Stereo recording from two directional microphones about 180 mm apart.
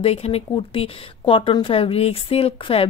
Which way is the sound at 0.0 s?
35° left (ahead or behind).